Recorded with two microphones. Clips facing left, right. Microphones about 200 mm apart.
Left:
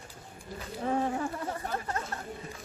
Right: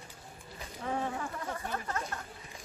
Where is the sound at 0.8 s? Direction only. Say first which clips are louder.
Left 5 dB; 35° left (ahead or behind).